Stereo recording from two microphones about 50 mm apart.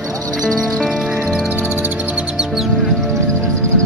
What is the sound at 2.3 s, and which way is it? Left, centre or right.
Music, centre.